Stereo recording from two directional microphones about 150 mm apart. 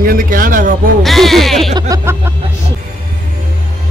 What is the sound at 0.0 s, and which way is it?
Speech, 70° right (ahead or behind).